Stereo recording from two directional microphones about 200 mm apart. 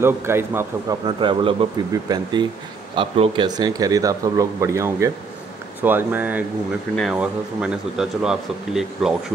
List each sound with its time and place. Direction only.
0.0 s speech: 10° right (ahead or behind)
1.0 s speech: 25° right (ahead or behind); by 9.1 s 5° right (ahead or behind)